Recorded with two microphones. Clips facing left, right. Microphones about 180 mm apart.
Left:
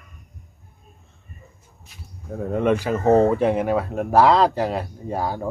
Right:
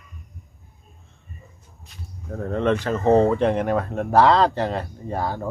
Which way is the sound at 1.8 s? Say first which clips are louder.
Right 2 dB; 5° left (ahead or behind).